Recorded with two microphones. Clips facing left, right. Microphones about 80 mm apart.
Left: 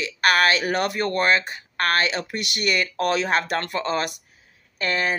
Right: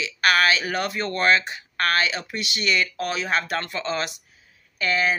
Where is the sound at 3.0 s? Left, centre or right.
Left.